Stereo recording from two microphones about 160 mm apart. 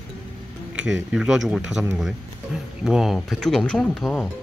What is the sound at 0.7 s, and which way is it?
Speech, 5° right (ahead or behind).